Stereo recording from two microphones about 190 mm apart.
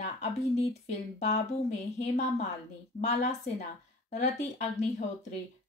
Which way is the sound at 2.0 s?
35° left (ahead or behind).